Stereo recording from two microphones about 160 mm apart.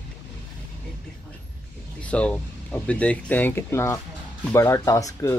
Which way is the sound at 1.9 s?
5° left (ahead or behind).